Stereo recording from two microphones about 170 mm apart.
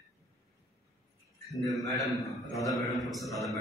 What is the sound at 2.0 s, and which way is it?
A man's voice, centre (ahead or behind).